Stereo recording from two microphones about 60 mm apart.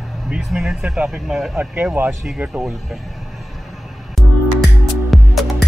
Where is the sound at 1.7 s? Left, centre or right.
Right.